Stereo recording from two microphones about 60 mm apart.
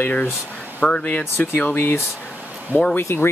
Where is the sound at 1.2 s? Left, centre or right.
Left.